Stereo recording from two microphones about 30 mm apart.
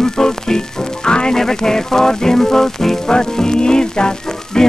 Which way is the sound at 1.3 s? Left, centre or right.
Centre.